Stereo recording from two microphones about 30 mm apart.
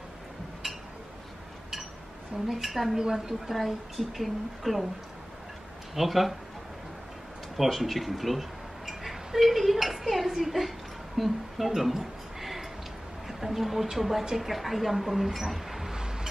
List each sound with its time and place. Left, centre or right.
2.5 s a woman's voice: centre
3.0 s a woman's voice: centre
3.5 s a woman's voice: centre
5.9 s a woman's voice: centre
7.5 s speech: centre
11.1 s a sound: centre
13.3 s a woman's voice: centre